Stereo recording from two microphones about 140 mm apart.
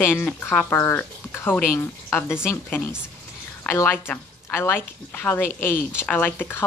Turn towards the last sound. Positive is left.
turn(degrees=15)  # may be behind; listen again after turning